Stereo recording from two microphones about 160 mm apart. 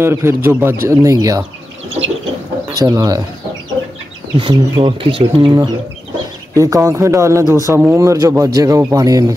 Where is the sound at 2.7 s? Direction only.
20° right (ahead or behind).